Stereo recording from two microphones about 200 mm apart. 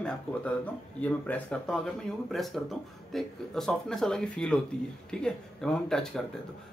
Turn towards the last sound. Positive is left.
turn(degrees=5)  # may be behind; listen again after turning